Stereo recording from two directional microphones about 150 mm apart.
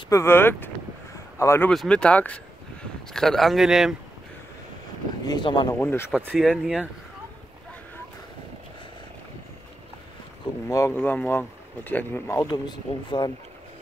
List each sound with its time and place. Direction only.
0.1 s speech: 15° left (ahead or behind)
1.7 s speech: 5° left (ahead or behind)
5.2 s speech: 30° left (ahead or behind)
5.8 s speech: 15° left (ahead or behind)
6.3 s speech: 5° right (ahead or behind)
10.7 s speech: 20° left (ahead or behind)